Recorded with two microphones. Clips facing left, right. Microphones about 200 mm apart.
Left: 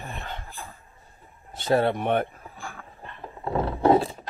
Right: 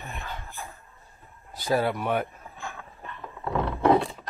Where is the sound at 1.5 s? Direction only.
25° left (ahead or behind).